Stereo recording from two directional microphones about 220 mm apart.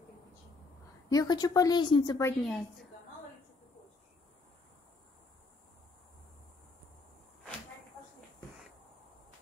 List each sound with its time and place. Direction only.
1.0 s a woman's voice: 15° left (ahead or behind)
2.4 s a woman's voice: centre (ahead or behind)